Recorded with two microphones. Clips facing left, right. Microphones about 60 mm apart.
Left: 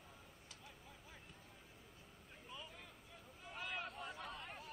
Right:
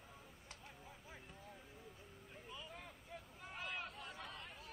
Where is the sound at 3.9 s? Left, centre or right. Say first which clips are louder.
Left 2 dB; centre.